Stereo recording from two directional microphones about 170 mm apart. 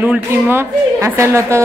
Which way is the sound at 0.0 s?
10° right (ahead or behind).